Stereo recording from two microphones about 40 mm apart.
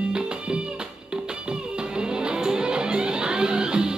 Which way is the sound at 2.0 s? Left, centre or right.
Right.